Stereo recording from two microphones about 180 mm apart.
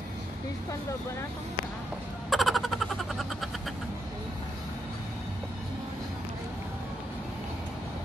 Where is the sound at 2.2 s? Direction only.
Centre (ahead or behind).